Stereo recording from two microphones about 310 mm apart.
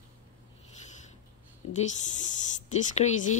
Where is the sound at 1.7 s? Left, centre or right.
Left.